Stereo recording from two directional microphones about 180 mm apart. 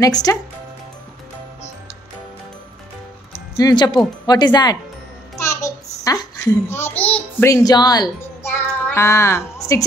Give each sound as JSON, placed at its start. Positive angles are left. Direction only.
{"t": 0.0, "sound": "speech", "side_deg": 20}
{"t": 3.5, "sound": "speech", "side_deg": 20}
{"t": 5.4, "sound": "babbling", "side_deg": 15}